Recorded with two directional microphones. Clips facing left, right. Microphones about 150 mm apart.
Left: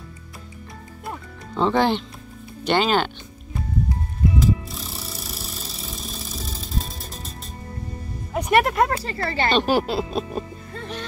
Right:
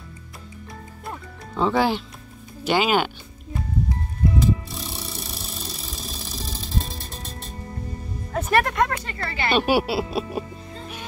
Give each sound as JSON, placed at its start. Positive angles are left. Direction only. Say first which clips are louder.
{"t": 1.0, "sound": "music", "louder": "left 2 dB", "side_deg": 0}
{"t": 2.6, "sound": "speech", "louder": "even", "side_deg": -10}
{"t": 4.4, "sound": "music", "louder": "even", "side_deg": 0}
{"t": 8.3, "sound": "speech", "louder": "left 2 dB", "side_deg": 20}
{"t": 9.5, "sound": "speech", "louder": "right 1 dB", "side_deg": -10}